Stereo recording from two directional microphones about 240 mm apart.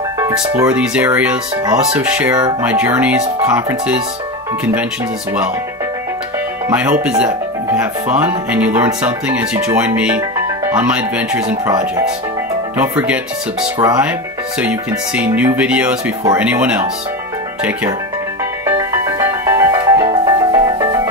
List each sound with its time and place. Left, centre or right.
0.2 s speech: centre
6.7 s speech: centre
12.7 s speech: centre
18.7 s music: centre